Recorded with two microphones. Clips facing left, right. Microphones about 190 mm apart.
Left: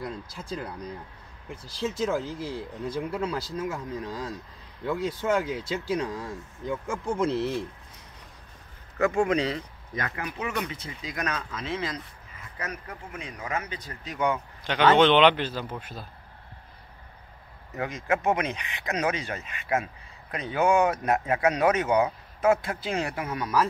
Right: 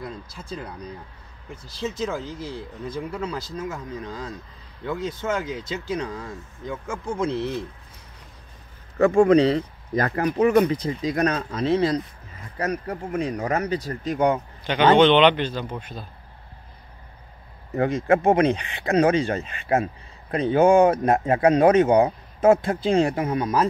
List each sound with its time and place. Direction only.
1.9 s speech: 5° left (ahead or behind)
8.9 s speech: 30° right (ahead or behind)
14.6 s speech: centre (ahead or behind)
17.7 s speech: 30° right (ahead or behind)